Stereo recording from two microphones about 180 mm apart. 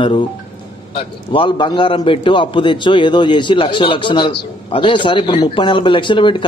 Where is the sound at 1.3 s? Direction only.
25° left (ahead or behind).